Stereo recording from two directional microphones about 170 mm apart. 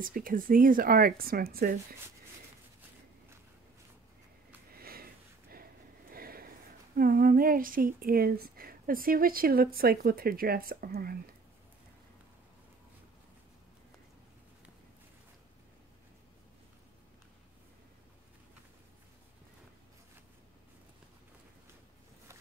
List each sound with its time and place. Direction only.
0.0 s speech: 55° right (ahead or behind)
4.7 s sniff: 60° right (ahead or behind)
5.5 s a sound: 60° right (ahead or behind)
7.0 s speech: 55° right (ahead or behind)